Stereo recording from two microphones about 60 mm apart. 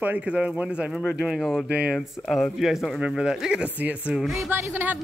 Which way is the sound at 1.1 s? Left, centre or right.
Centre.